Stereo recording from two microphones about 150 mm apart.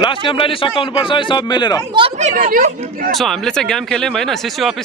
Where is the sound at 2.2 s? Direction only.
60° right (ahead or behind).